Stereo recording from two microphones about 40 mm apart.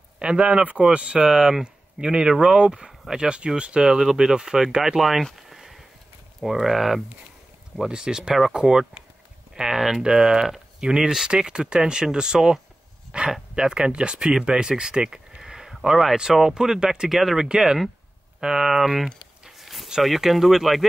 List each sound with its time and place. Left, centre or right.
0.2 s speech: right
1.3 s speech: centre
3.8 s speech: centre
5.5 s a sound: centre
6.4 s speech: centre
7.8 s speech: centre
9.8 s speech: centre
17.1 s speech: centre
17.4 s speech: centre
19.5 s a sound: centre
20.0 s speech: centre